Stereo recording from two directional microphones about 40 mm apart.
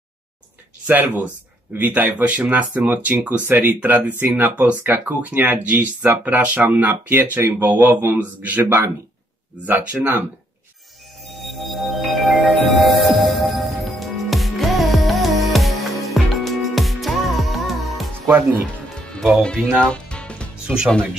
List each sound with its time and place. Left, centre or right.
0.8 s speech: right
8.4 s speech: right
8.6 s speech: right
9.6 s speech: right
11.2 s music: centre
18.3 s speech: right
19.8 s music: left
20.6 s speech: centre